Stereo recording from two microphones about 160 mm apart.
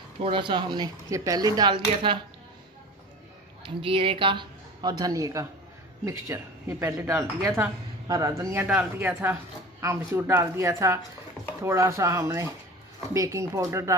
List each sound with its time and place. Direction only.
0.2 s speech: 30° right (ahead or behind)
3.6 s speech: 35° right (ahead or behind); by 13.9 s 20° right (ahead or behind)